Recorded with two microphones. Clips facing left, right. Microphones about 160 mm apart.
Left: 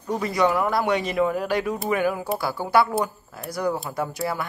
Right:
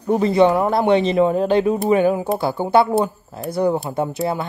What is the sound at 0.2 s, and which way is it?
Speech, 25° right (ahead or behind).